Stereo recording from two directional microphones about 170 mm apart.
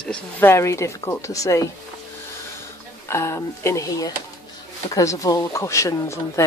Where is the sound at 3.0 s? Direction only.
15° left (ahead or behind).